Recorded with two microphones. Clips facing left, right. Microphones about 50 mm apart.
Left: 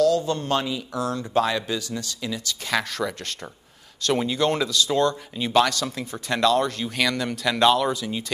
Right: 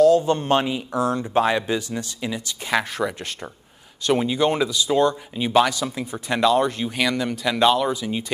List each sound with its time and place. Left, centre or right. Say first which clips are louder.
0.0 s speech: right 5 dB; right